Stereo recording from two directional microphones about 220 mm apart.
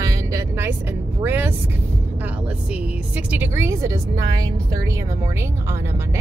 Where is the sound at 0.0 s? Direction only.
15° right (ahead or behind).